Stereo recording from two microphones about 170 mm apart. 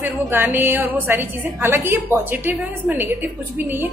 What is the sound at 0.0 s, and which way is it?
A woman's voice, 10° right (ahead or behind).